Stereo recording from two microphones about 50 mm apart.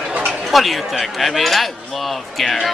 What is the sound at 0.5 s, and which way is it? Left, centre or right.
Speech, centre.